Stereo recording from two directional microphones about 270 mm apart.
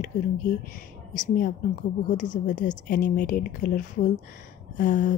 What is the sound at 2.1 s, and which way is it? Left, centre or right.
A woman's voice, left.